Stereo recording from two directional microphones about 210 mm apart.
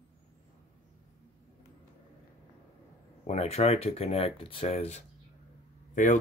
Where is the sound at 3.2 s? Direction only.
30° left (ahead or behind).